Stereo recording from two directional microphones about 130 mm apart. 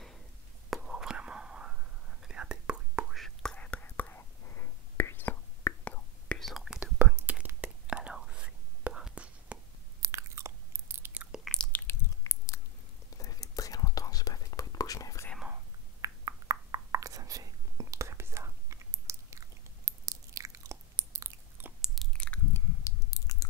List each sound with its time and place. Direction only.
0.7 s whispering: 5° right (ahead or behind); by 6.3 s 15° left (ahead or behind)
6.4 s whispering: centre (ahead or behind)
10.0 s chewing: 20° right (ahead or behind)
11.3 s biting: 5° left (ahead or behind)
11.9 s a sound: 25° left (ahead or behind)
13.2 s whispering: 25° left (ahead or behind)
16.0 s whispering: 30° right (ahead or behind)
21.8 s chewing: centre (ahead or behind)
22.8 s chewing: 25° left (ahead or behind)